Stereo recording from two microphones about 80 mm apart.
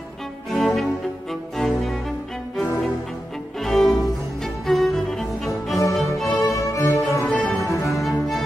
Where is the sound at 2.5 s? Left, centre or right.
Centre.